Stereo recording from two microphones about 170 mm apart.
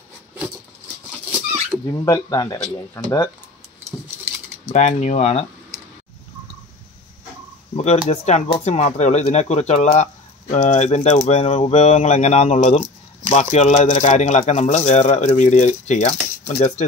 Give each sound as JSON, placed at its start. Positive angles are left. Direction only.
{"t": 1.9, "sound": "speech", "side_deg": 20}
{"t": 4.7, "sound": "speech", "side_deg": 40}
{"t": 7.7, "sound": "speech", "side_deg": 40}